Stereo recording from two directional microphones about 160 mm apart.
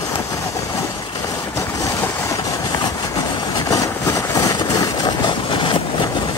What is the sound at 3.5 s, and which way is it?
Vehicle, 20° left (ahead or behind).